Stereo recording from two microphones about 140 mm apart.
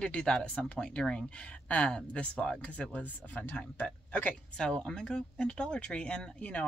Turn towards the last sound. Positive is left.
turn(degrees=10)  # may be behind; listen again after turning